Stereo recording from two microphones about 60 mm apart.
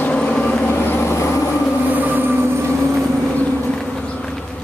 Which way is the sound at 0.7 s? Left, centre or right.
Left.